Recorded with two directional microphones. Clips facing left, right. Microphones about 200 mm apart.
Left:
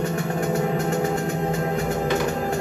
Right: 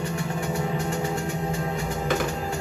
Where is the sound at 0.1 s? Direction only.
60° left (ahead or behind).